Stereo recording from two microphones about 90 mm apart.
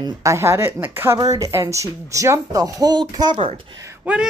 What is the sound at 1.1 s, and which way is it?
A woman's voice, 45° right (ahead or behind).